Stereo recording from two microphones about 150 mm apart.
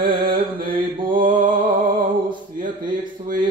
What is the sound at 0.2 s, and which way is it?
Mantra, 35° right (ahead or behind).